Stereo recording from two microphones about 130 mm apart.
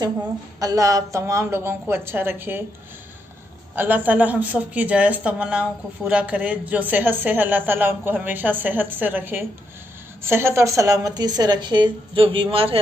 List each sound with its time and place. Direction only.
0.6 s a woman's voice: 25° right (ahead or behind)
3.7 s a woman's voice: 15° right (ahead or behind); by 12.7 s 45° right (ahead or behind)